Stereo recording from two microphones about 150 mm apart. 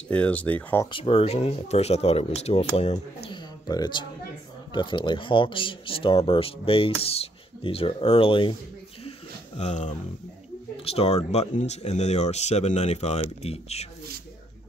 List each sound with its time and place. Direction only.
0.1 s speech: 10° left (ahead or behind)
0.8 s speech: 35° left (ahead or behind)
3.3 s a sound: 30° left (ahead or behind)
4.7 s speech: 30° left (ahead or behind)
9.6 s speech: 50° left (ahead or behind)